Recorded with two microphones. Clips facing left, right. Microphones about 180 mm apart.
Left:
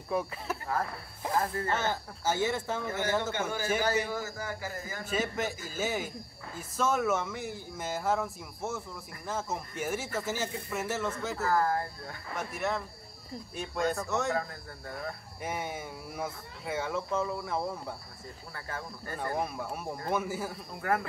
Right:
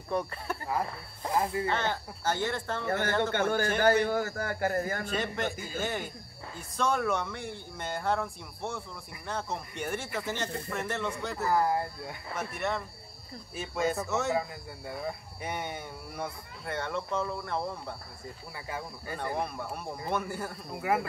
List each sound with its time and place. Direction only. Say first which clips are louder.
0.1 s speech: even; 5° left (ahead or behind)
1.3 s speech: right 2 dB; 10° right (ahead or behind)
1.7 s speech: even; 5° left (ahead or behind)
3.3 s a man's voice: right 3 dB; 60° right (ahead or behind)
5.0 s speech: even; 5° left (ahead or behind)
11.3 s speech: right 2 dB; 15° right (ahead or behind)
12.4 s speech: even; centre (ahead or behind)
18.5 s speech: right 1 dB; 10° right (ahead or behind)
19.3 s speech: even; centre (ahead or behind)
20.8 s speech: right 1 dB; 10° right (ahead or behind)